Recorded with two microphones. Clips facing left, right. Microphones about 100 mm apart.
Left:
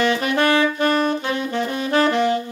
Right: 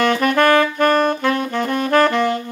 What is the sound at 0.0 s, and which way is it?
Saxophone, 50° right (ahead or behind).